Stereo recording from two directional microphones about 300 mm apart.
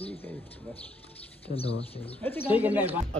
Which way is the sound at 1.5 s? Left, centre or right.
Left.